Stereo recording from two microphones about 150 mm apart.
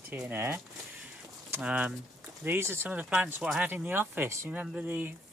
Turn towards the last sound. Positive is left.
turn(degrees=-10)  # may be behind; listen again after turning